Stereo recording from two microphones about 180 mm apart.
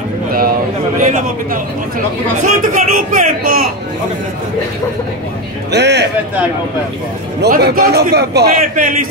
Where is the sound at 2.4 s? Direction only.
50° right (ahead or behind).